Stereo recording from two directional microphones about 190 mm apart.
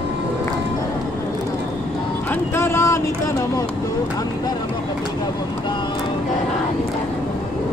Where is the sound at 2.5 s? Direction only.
15° left (ahead or behind).